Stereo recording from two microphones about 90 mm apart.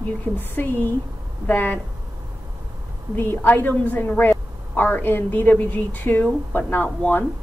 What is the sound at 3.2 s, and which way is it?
A woman's voice, 20° left (ahead or behind).